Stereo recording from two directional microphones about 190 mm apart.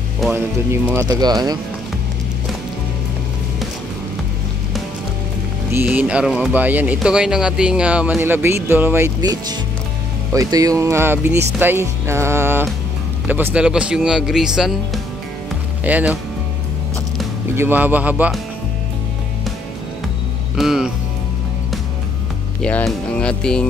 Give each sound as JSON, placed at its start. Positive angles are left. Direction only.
{"t": 0.2, "sound": "speech", "side_deg": -10}
{"t": 5.7, "sound": "speech", "side_deg": -10}
{"t": 15.8, "sound": "speech", "side_deg": -10}
{"t": 17.6, "sound": "speech", "side_deg": -10}
{"t": 20.5, "sound": "speech", "side_deg": 0}
{"t": 22.6, "sound": "speech", "side_deg": 5}